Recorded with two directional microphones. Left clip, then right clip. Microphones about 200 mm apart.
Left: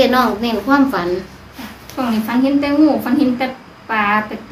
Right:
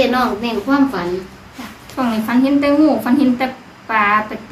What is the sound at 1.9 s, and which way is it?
A woman's voice, 10° right (ahead or behind).